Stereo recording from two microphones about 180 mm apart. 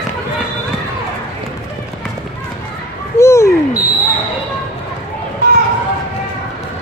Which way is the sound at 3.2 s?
15° left (ahead or behind).